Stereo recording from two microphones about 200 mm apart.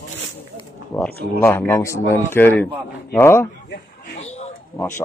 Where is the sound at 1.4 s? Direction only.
10° left (ahead or behind).